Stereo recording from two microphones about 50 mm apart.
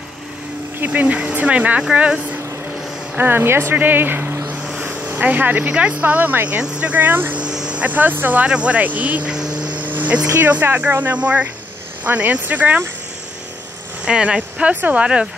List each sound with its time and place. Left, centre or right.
0.7 s speech: right
3.2 s speech: right
3.7 s speech: right
4.7 s vehicle: right
5.2 s speech: right
5.7 s speech: right
7.5 s vehicle: centre
7.8 s speech: right
8.5 s speech: right
9.3 s vehicle: centre
9.8 s vehicle: right
10.4 s speech: right
14.0 s speech: centre